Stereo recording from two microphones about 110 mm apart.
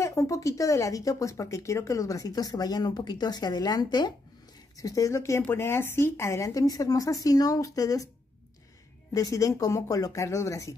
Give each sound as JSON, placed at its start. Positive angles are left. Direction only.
{"t": 0.0, "sound": "speech", "side_deg": 25}
{"t": 9.1, "sound": "speech", "side_deg": 30}